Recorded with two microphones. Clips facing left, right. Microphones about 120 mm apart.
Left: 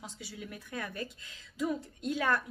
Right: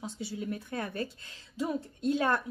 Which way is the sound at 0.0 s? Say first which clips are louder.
Right 8 dB; 25° right (ahead or behind).